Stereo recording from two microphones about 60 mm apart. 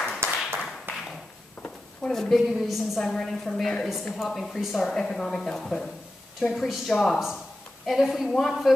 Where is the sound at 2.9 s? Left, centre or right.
Centre.